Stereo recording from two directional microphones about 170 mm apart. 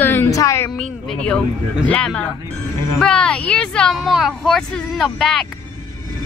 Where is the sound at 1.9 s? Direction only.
5° left (ahead or behind).